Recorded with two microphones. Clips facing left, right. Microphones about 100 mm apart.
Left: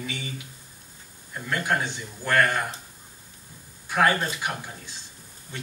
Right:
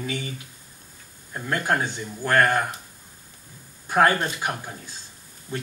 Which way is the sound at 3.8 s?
40° right (ahead or behind).